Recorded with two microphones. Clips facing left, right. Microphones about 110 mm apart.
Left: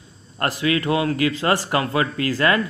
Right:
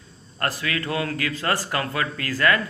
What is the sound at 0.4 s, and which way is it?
A man's voice, 25° left (ahead or behind).